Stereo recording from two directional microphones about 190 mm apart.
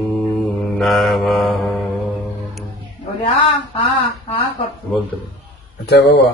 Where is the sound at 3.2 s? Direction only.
30° left (ahead or behind).